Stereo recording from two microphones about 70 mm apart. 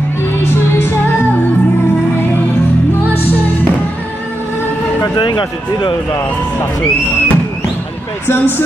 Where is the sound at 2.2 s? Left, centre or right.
Left.